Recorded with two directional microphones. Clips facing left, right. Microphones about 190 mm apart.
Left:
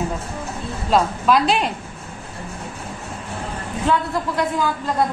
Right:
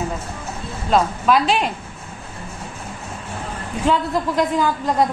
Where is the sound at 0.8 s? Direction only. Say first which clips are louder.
Even; centre (ahead or behind).